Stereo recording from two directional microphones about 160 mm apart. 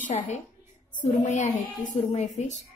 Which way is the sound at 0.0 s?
45° left (ahead or behind).